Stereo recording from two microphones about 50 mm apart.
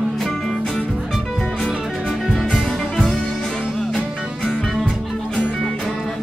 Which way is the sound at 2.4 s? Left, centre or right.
Centre.